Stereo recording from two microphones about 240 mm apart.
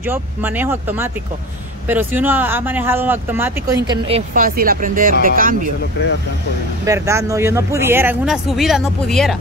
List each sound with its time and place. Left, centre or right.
0.0 s speech: centre
4.3 s speech: right
6.0 s speech: left
6.8 s speech: centre